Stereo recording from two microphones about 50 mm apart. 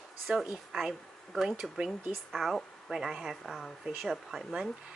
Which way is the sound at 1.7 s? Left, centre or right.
Centre.